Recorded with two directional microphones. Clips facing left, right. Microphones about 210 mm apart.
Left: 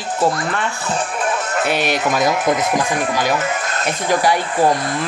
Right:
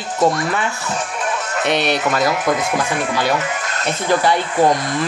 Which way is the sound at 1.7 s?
10° left (ahead or behind).